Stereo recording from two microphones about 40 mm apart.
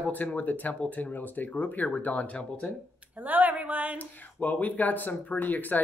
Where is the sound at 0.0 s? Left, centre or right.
Left.